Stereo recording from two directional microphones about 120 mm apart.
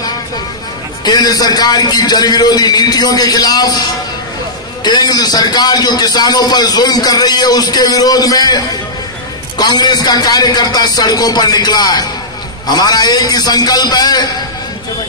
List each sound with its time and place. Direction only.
1.0 s a man's voice: 35° left (ahead or behind)